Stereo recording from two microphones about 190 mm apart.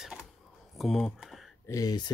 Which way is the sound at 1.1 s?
Centre (ahead or behind).